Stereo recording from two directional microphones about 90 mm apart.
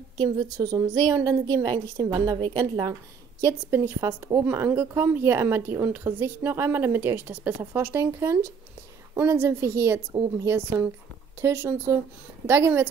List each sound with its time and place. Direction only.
0.2 s a woman's voice: 45° right (ahead or behind)
3.7 s speech: 35° right (ahead or behind)